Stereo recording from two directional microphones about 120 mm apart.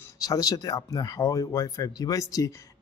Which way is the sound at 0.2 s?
30° left (ahead or behind).